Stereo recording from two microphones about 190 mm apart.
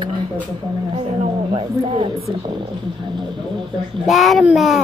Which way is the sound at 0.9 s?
30° right (ahead or behind).